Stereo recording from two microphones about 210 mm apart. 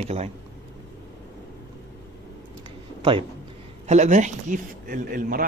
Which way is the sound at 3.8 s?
35° right (ahead or behind).